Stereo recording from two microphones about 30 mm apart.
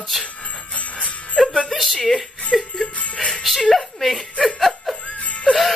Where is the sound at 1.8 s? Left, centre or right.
Centre.